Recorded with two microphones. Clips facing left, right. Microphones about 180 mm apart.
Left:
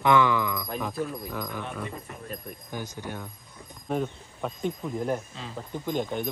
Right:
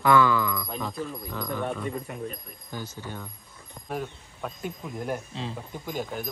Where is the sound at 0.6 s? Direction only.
5° left (ahead or behind).